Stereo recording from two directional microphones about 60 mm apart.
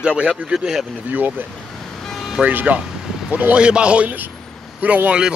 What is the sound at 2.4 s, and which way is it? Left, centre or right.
A man's voice, right.